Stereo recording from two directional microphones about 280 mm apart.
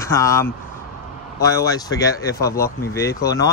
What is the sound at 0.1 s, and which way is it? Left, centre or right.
Speech, centre.